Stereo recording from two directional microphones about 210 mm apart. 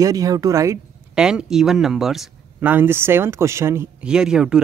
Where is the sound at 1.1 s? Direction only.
5° right (ahead or behind).